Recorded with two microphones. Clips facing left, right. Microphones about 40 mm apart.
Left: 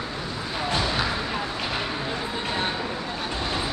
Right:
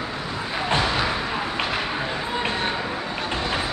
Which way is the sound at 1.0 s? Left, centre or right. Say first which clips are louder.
Right 2 dB; centre.